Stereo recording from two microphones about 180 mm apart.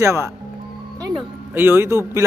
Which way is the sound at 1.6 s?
10° right (ahead or behind).